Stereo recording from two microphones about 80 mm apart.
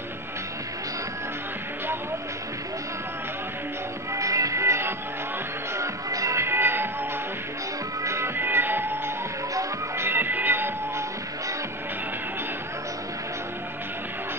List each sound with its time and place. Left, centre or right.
4.1 s music: right
8.0 s music: right
9.5 s music: right
10.0 s music: right